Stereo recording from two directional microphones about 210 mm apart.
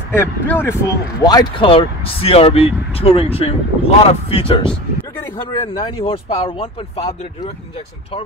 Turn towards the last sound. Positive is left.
turn(degrees=25)  # may be behind; listen again after turning